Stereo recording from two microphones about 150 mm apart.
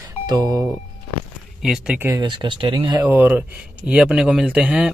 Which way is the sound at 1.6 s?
5° right (ahead or behind).